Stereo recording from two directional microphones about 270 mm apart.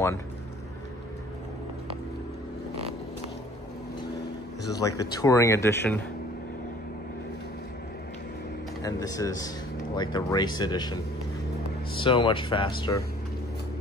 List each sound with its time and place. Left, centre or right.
4.6 s speech: centre
8.8 s speech: centre
12.0 s speech: centre